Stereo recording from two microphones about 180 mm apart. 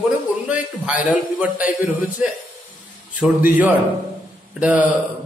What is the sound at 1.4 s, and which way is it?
A man's voice, 10° right (ahead or behind).